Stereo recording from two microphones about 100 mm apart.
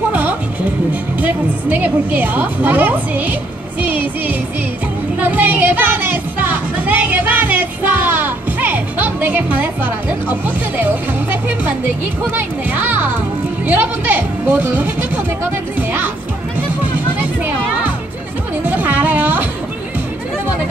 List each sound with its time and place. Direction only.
0.1 s music: 15° right (ahead or behind)
1.2 s a woman's voice: 15° right (ahead or behind)
3.8 s music: 15° right (ahead or behind)
5.2 s music: 15° right (ahead or behind)
12.4 s a woman's voice: 20° right (ahead or behind)
18.7 s music: 20° right (ahead or behind)